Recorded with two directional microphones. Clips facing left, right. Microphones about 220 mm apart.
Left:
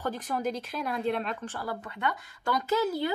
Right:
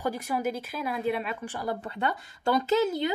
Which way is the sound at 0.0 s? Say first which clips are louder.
Right 2 dB; 10° right (ahead or behind).